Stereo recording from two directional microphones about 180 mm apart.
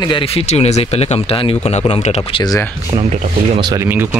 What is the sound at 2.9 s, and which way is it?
Speech, 35° right (ahead or behind).